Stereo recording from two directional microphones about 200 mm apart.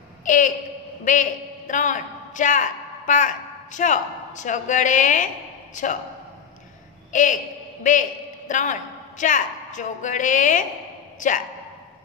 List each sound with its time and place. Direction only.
0.2 s a sound: 40° left (ahead or behind)
1.0 s a woman's voice: 40° left (ahead or behind)
7.1 s a man's voice: 40° left (ahead or behind)